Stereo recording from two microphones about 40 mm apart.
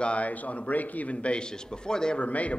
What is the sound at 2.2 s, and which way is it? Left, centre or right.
Speech, left.